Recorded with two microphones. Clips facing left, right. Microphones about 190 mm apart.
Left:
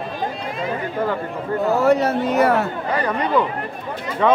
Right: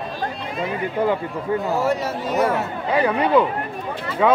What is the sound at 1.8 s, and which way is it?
Speech, 60° left (ahead or behind).